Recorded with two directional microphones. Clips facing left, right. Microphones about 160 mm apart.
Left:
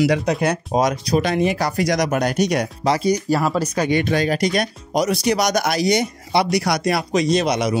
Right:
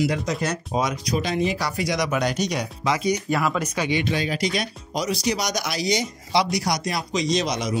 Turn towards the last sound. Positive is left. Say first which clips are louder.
# left 5 dB
turn(degrees=65)  # may be behind; listen again after turning